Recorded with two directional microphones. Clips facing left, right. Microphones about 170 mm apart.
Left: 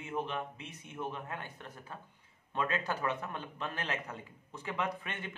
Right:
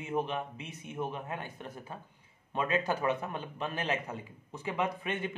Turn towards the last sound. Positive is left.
turn(degrees=-15)  # may be behind; listen again after turning